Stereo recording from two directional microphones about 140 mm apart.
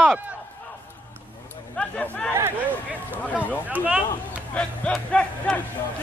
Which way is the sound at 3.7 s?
10° right (ahead or behind).